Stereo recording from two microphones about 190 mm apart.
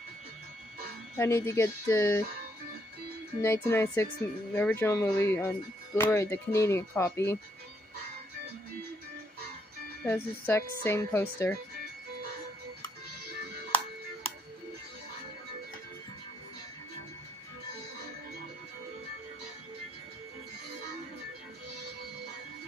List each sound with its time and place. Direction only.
1.1 s speech: 10° left (ahead or behind)
3.3 s speech: 15° left (ahead or behind)
10.0 s speech: 10° left (ahead or behind)